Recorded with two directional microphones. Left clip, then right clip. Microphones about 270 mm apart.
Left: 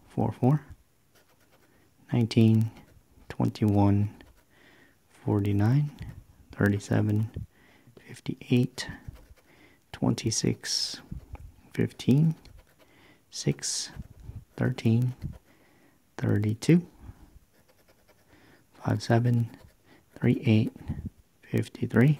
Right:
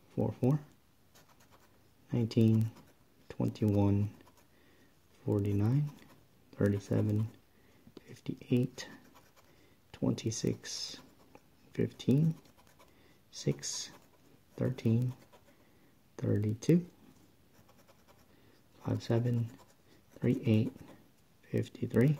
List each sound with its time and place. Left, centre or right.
0.1 s speech: left
2.0 s speech: left
5.2 s speech: left
9.8 s a sound: left
13.0 s speech: centre
16.2 s speech: left
18.8 s speech: left